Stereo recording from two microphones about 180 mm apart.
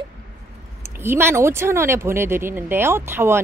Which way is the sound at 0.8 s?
15° right (ahead or behind).